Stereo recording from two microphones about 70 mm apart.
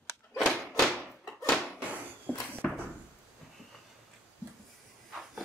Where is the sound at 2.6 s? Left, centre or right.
Centre.